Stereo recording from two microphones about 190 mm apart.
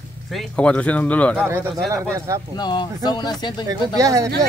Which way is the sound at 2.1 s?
15° right (ahead or behind).